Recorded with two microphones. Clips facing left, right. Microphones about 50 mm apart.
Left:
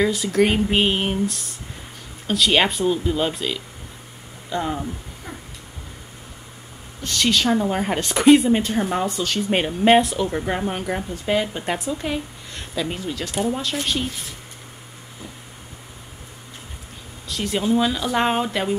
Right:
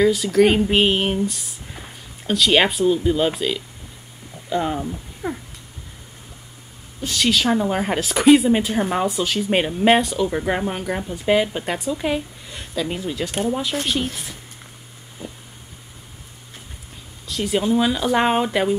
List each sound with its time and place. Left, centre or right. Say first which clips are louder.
0.0 s a woman's voice: right 3 dB; centre
0.7 s a woman's voice: right 2 dB; centre
5.2 s cat: right 10 dB; right
7.0 s a woman's voice: right 1 dB; centre
11.2 s speech: right 4 dB; centre
11.6 s a woman's voice: even; centre
12.0 s a woman's voice: right 3 dB; centre
17.3 s speech: right 1 dB; centre